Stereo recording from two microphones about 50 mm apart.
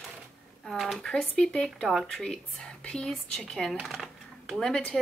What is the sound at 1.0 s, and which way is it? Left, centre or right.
Speech, centre.